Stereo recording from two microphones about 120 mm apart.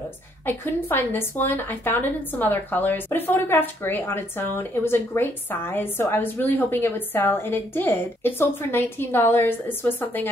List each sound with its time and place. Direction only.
0.5 s a woman's voice: 15° left (ahead or behind)